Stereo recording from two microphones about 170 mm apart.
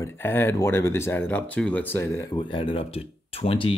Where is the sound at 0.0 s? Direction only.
15° left (ahead or behind).